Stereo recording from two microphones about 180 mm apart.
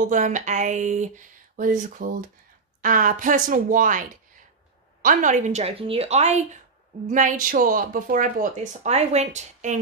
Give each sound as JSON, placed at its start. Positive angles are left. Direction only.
{"t": 0.1, "sound": "speech", "side_deg": -45}
{"t": 5.0, "sound": "a woman's voice", "side_deg": -45}